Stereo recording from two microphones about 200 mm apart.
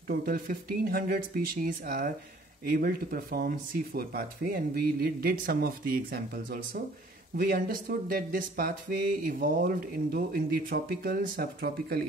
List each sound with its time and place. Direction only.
0.1 s speech: 45° right (ahead or behind)